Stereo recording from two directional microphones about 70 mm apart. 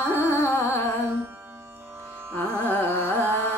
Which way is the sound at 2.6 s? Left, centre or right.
Left.